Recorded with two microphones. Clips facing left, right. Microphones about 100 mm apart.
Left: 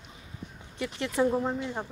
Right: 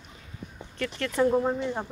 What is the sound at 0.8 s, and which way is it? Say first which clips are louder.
Speech: right 2 dB; 15° left (ahead or behind).